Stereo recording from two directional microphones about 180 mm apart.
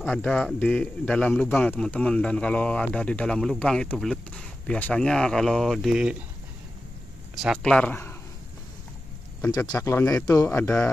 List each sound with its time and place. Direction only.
0.0 s a man's voice: 5° left (ahead or behind)
7.4 s speech: 5° left (ahead or behind)
9.6 s speech: 15° left (ahead or behind)